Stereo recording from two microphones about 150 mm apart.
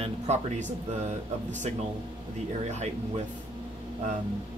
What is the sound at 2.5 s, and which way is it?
Speech, 50° right (ahead or behind).